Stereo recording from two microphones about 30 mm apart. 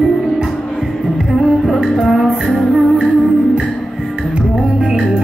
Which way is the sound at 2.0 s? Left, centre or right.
Right.